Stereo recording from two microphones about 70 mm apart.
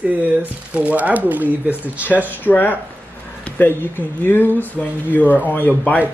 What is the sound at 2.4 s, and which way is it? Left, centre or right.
Speech, left.